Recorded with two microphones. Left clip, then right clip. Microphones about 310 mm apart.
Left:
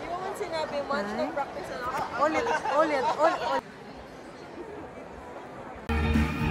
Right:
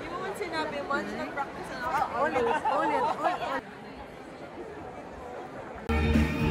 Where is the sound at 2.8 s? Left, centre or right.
Left.